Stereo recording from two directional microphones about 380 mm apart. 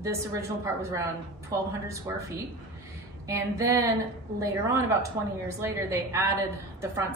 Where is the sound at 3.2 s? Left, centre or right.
Centre.